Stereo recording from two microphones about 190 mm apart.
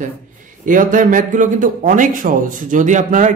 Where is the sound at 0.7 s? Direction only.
45° right (ahead or behind).